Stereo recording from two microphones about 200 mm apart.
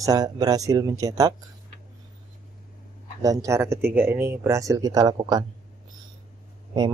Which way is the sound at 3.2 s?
15° right (ahead or behind).